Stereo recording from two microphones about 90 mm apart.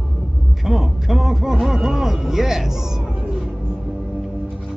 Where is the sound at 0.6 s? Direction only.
5° right (ahead or behind).